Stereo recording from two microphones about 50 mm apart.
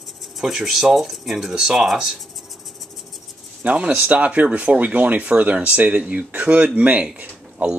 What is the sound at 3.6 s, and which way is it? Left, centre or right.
Speech, right.